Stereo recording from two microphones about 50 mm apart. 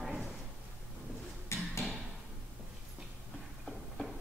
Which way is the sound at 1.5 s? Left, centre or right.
Left.